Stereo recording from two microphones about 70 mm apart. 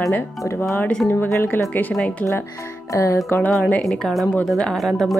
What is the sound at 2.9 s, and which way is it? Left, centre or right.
Music, left.